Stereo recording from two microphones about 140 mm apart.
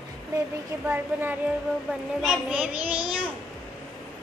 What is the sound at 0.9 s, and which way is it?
A child's voice, 15° right (ahead or behind).